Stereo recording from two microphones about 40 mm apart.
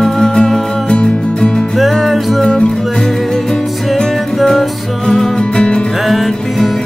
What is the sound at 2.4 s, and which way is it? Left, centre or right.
Music, left.